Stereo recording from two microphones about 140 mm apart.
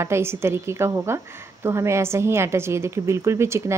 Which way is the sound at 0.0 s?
20° right (ahead or behind).